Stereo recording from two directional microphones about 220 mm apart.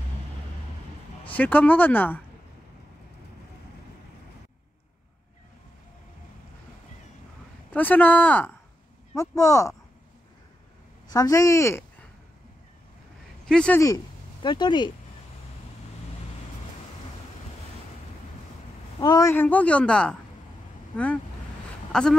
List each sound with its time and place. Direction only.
1.3 s a man's voice: 5° left (ahead or behind)
7.7 s a man's voice: 5° left (ahead or behind)
11.1 s a man's voice: 15° left (ahead or behind)
13.5 s speech: 5° left (ahead or behind); by 14.9 s 20° left (ahead or behind)
18.9 s a man's voice: 15° left (ahead or behind)